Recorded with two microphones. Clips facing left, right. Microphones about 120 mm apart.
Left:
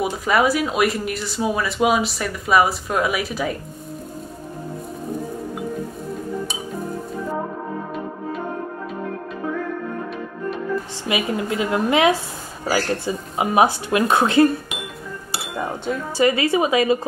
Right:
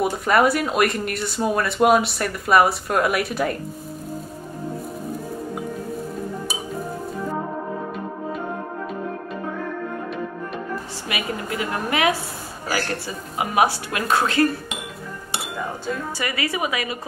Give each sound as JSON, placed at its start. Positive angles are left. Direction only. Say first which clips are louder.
{"t": 0.0, "sound": "speech", "louder": "right 1 dB", "side_deg": 0}
{"t": 11.1, "sound": "speech", "louder": "left 5 dB", "side_deg": 25}
{"t": 15.8, "sound": "speech", "louder": "left 12 dB", "side_deg": 25}